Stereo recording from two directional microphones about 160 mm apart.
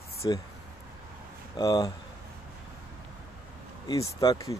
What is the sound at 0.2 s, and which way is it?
Speech, 25° left (ahead or behind).